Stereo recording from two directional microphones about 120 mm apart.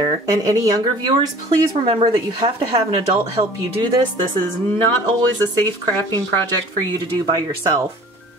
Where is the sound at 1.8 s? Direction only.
45° right (ahead or behind).